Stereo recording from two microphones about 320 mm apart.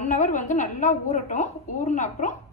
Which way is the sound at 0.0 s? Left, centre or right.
Left.